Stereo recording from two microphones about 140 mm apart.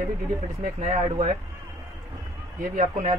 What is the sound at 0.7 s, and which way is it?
Speech, 55° right (ahead or behind).